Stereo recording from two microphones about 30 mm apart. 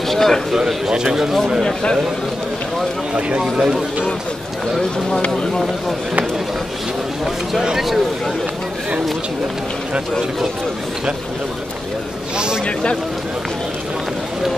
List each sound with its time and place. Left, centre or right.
0.1 s a man's voice: centre
0.9 s speech: centre
3.2 s speech: right
3.5 s speech: right